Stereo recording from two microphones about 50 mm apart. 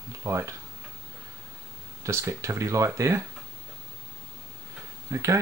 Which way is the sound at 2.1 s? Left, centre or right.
Right.